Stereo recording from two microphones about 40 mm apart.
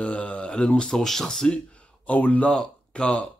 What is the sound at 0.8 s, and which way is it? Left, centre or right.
Speech, centre.